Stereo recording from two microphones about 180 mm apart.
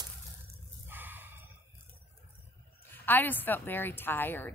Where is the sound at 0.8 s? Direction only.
10° right (ahead or behind).